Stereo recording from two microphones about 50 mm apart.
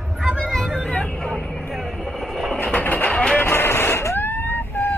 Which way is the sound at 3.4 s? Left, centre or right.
Left.